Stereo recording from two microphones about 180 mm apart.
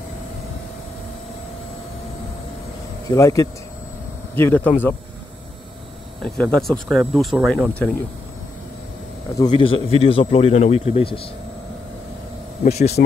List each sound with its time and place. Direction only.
3.1 s speech: 20° left (ahead or behind)
6.2 s speech: 5° left (ahead or behind)
9.4 s speech: 25° left (ahead or behind)
12.6 s speech: 35° left (ahead or behind)